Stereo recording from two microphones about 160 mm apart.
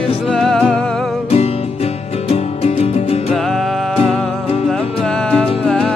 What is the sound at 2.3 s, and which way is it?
Music, 45° left (ahead or behind).